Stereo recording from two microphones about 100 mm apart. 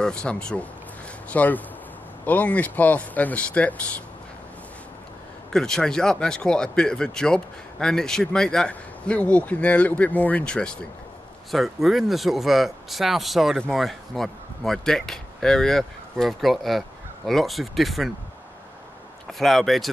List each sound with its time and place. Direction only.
0.0 s speech: 10° left (ahead or behind)
5.5 s speech: 5° left (ahead or behind)
19.3 s speech: centre (ahead or behind)